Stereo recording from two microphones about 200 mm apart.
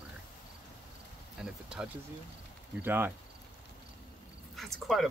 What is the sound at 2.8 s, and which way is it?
Speech, 10° right (ahead or behind).